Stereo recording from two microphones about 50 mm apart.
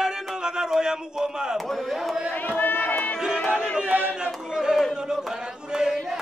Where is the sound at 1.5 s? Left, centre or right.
Centre.